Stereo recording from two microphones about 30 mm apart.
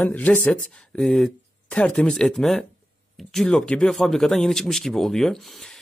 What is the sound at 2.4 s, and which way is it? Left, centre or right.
Speech, left.